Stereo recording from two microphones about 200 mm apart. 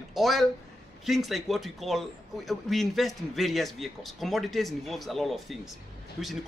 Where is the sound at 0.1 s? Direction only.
Centre (ahead or behind).